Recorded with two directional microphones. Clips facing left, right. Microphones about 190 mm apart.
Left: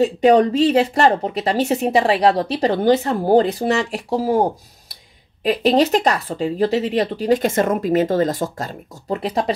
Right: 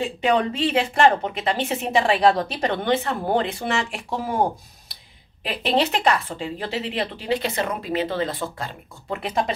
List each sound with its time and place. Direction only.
0.0 s speech: 40° left (ahead or behind)